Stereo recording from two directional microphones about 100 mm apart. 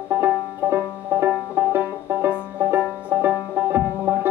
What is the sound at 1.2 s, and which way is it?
Banjo, 20° right (ahead or behind).